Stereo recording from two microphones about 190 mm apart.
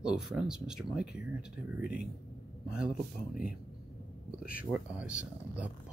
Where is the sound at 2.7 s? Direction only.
5° right (ahead or behind).